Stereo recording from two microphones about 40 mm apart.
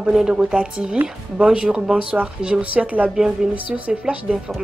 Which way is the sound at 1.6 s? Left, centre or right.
Centre.